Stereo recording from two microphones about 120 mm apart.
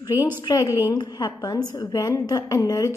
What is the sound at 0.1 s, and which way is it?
A woman's voice, 30° left (ahead or behind).